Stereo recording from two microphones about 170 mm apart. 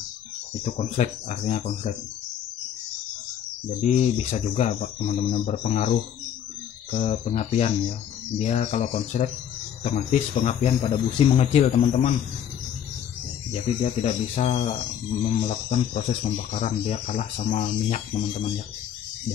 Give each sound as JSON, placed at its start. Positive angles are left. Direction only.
{"t": 0.6, "sound": "speech", "side_deg": 45}
{"t": 3.8, "sound": "speech", "side_deg": 40}
{"t": 13.5, "sound": "speech", "side_deg": 40}